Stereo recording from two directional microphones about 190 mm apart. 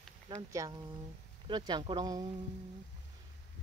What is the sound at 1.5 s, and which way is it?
Speech, 25° right (ahead or behind).